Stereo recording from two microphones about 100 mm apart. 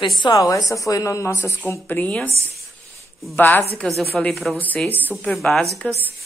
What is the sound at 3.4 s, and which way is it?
Speech, 20° left (ahead or behind).